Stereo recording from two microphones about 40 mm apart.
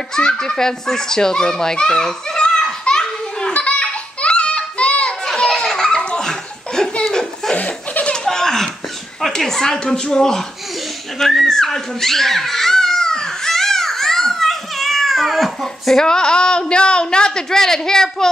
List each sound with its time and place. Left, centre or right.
0.1 s a child's voice: centre
2.0 s children playing: centre
3.5 s children playing: left
5.2 s laughter: centre
7.1 s a sound: centre
9.4 s a child's voice: centre
11.1 s speech: centre
11.4 s a sound: centre